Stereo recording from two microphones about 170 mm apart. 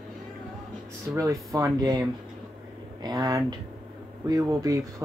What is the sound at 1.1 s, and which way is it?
Speech, 20° right (ahead or behind).